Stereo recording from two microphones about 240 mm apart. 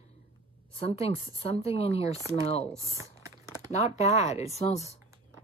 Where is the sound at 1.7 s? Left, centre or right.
Left.